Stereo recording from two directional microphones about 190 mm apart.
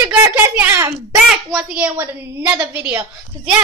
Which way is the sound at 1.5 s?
5° right (ahead or behind).